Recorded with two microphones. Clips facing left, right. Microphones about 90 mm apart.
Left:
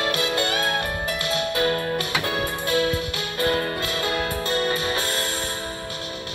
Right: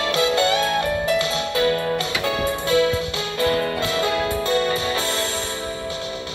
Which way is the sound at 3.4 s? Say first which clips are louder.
Right 3 dB; 35° left (ahead or behind).